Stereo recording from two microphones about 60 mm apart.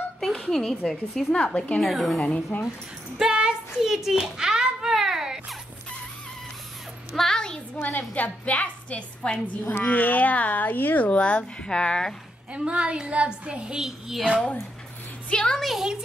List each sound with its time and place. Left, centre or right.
0.2 s speech: centre
1.8 s a woman's voice: centre
2.2 s speech: left
3.2 s a sound: centre
7.2 s a sound: centre
8.1 s a woman's voice: left
11.1 s speech: centre
12.5 s speech: centre
15.2 s speech: centre
15.6 s a woman's voice: centre